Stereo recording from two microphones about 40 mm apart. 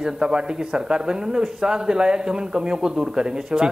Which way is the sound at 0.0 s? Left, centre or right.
Centre.